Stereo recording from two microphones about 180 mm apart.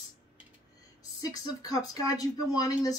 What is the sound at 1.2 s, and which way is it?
Speech, 20° left (ahead or behind).